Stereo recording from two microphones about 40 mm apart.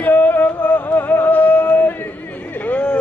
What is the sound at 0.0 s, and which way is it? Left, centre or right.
Music, left.